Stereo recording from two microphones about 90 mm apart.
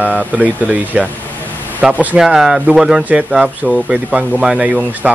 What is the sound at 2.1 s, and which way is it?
A man's voice, 5° right (ahead or behind).